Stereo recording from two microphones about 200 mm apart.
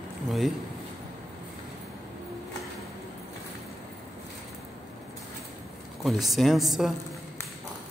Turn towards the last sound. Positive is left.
turn(degrees=0)  # may be behind; listen again after turning